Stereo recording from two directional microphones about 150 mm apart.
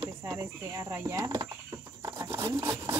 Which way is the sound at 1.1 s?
25° right (ahead or behind).